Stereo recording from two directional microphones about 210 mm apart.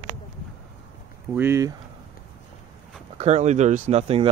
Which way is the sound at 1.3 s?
10° right (ahead or behind).